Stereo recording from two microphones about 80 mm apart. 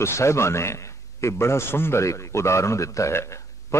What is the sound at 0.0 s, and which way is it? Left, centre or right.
A man's voice, left.